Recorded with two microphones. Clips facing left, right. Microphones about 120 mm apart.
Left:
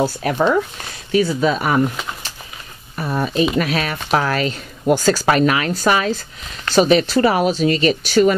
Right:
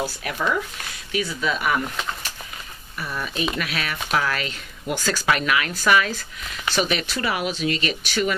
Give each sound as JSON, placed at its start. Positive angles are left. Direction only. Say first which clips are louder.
{"t": 0.0, "sound": "speech", "louder": "left 9 dB", "side_deg": 35}
{"t": 3.0, "sound": "speech", "louder": "left 9 dB", "side_deg": 40}